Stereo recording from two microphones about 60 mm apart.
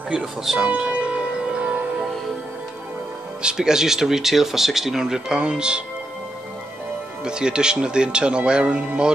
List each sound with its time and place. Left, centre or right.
0.1 s speech: centre
0.7 s music: right
3.4 s speech: centre
7.2 s speech: centre